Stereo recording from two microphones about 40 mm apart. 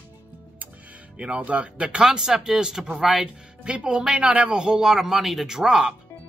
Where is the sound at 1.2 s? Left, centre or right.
Right.